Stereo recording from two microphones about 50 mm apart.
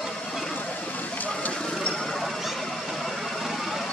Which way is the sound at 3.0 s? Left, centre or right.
Centre.